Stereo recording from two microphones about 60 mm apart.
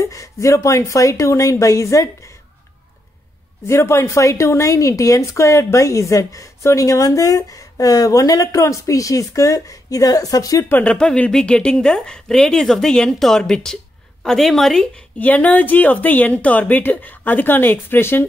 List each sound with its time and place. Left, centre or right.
0.0 s speech: left
3.6 s speech: left
10.6 s a woman's voice: left
11.0 s a woman's voice: centre
15.1 s a woman's voice: left